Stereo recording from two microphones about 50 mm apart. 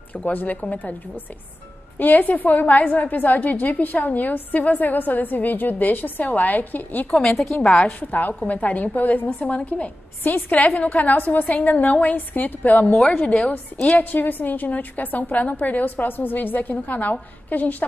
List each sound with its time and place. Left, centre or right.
0.1 s a woman's voice: left
7.1 s a woman's voice: centre
7.6 s a woman's voice: centre
8.0 s a woman's voice: left
12.9 s a woman's voice: centre
13.3 s a woman's voice: left
13.9 s a woman's voice: left